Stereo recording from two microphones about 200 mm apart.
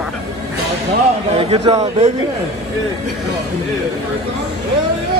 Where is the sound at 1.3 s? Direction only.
30° right (ahead or behind).